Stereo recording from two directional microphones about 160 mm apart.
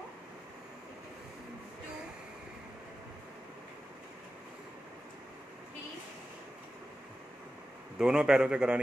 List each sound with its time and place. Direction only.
8.0 s a man's voice: 5° right (ahead or behind)